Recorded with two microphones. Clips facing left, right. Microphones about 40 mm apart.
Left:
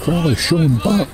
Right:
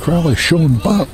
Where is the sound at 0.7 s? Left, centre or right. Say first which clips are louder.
Right 2 dB; left.